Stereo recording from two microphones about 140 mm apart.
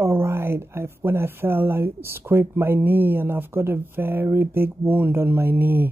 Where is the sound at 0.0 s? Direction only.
15° right (ahead or behind).